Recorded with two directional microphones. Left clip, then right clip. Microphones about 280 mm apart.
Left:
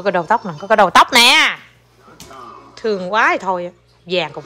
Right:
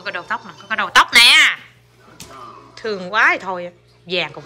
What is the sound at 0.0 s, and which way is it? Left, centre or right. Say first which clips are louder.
Speech: left 9 dB; left.